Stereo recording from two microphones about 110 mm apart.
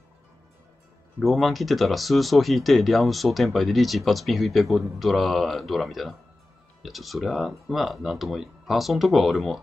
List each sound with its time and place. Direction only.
1.2 s speech: centre (ahead or behind)